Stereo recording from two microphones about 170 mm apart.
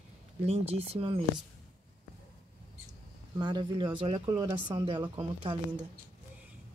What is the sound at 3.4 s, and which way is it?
Speech, 25° right (ahead or behind).